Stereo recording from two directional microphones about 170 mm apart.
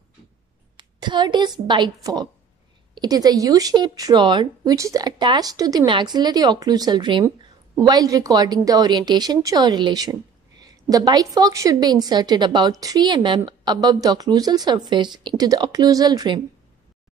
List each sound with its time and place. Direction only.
0.7 s a woman's voice: 25° right (ahead or behind)
2.9 s speech: 25° right (ahead or behind)